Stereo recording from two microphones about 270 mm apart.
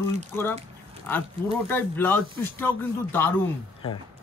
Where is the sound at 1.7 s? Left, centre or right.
Centre.